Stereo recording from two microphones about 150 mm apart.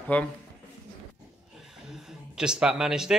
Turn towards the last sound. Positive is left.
turn(degrees=-5)  # may be behind; listen again after turning